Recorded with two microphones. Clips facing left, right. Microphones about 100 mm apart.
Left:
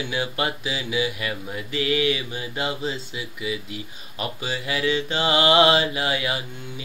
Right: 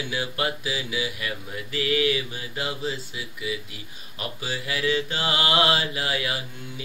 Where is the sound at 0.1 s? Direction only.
20° left (ahead or behind).